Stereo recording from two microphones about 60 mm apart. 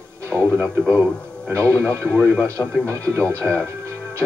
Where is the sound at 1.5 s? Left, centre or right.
Right.